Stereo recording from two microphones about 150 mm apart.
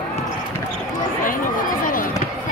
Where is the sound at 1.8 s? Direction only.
65° left (ahead or behind).